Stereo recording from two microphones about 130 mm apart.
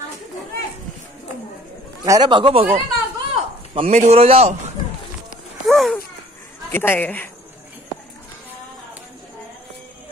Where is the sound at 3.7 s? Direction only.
60° right (ahead or behind).